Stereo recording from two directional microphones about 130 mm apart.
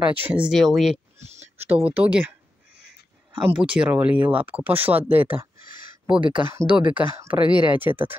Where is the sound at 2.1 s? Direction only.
10° right (ahead or behind).